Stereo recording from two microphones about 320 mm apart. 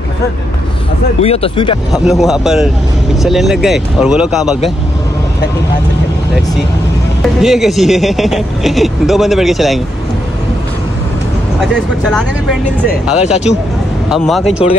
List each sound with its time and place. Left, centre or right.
1.2 s speech: centre
2.0 s speech: centre
7.2 s speech: centre
11.6 s speech: centre
13.2 s speech: left
14.0 s speech: centre